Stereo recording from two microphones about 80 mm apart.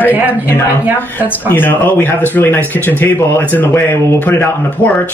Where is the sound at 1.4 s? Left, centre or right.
Left.